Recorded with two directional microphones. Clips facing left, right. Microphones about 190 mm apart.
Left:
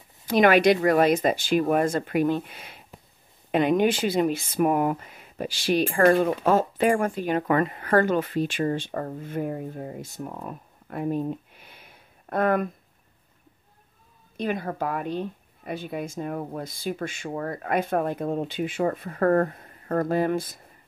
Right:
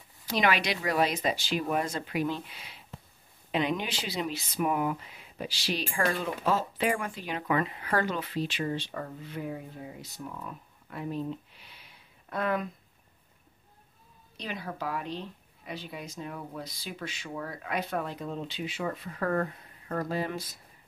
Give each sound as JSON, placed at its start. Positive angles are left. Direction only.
{"t": 0.3, "sound": "speech", "side_deg": 50}
{"t": 14.3, "sound": "speech", "side_deg": 50}